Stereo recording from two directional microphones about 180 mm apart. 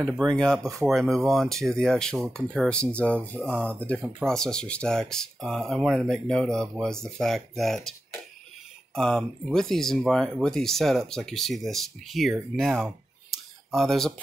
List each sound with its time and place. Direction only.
0.1 s speech: centre (ahead or behind)
0.6 s speech: 20° right (ahead or behind)
0.8 s speech: centre (ahead or behind)
8.9 s speech: 5° left (ahead or behind)